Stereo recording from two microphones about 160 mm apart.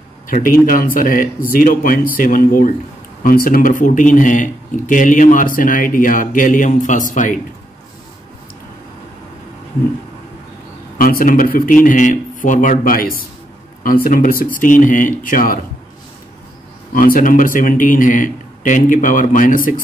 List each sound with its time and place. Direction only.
0.3 s speech: 60° left (ahead or behind)
11.0 s speech: 65° left (ahead or behind)
16.9 s speech: 60° left (ahead or behind)